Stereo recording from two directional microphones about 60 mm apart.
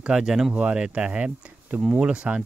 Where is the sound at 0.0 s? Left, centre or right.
Centre.